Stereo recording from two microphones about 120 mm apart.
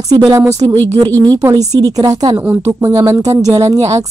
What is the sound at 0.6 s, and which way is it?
Speech, 45° right (ahead or behind).